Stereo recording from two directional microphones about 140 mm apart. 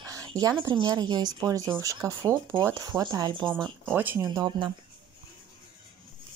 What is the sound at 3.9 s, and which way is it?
Speech, 15° right (ahead or behind).